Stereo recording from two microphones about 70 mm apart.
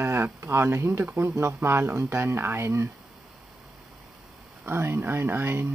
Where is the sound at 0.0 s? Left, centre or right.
Right.